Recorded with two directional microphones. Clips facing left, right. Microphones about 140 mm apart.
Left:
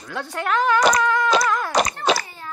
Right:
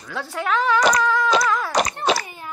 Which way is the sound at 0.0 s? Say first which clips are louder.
Even; centre (ahead or behind).